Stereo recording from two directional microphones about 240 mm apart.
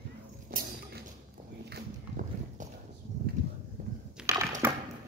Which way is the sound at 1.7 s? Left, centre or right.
Right.